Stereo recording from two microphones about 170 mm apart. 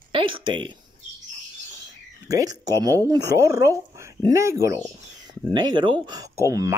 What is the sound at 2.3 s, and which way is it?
Speech, 20° right (ahead or behind).